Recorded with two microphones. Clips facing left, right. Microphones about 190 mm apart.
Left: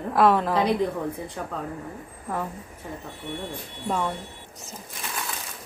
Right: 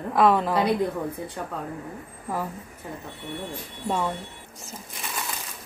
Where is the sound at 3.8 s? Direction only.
5° right (ahead or behind).